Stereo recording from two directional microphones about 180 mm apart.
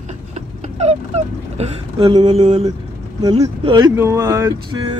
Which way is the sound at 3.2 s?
25° right (ahead or behind).